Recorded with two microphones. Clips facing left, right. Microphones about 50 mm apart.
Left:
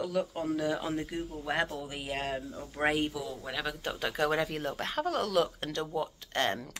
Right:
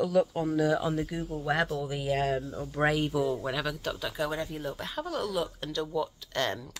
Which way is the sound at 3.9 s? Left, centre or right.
Left.